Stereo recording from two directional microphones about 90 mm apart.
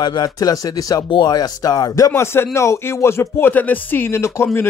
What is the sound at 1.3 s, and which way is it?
Speech, 45° left (ahead or behind).